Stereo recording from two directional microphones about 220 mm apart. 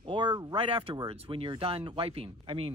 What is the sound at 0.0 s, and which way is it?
Speech, 20° right (ahead or behind).